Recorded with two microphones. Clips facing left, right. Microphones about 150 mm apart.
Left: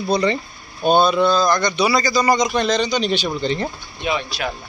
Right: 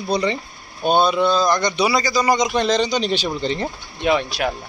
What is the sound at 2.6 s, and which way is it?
A man's voice, 30° right (ahead or behind).